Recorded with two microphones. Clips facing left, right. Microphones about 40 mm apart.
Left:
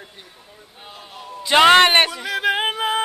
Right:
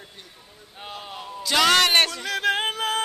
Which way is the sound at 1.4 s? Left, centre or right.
Left.